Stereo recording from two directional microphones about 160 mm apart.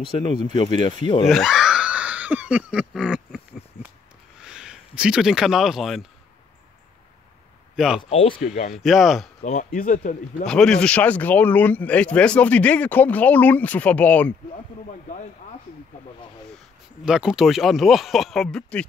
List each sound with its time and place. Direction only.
0.2 s speech: 30° left (ahead or behind)
1.3 s screaming: centre (ahead or behind)
4.4 s speech: 5° right (ahead or behind)
7.7 s speech: 5° right (ahead or behind)
8.1 s speech: 35° left (ahead or behind)
8.7 s speech: centre (ahead or behind)
9.4 s speech: 50° left (ahead or behind)
10.4 s speech: 5° left (ahead or behind)
17.0 s speech: 5° right (ahead or behind)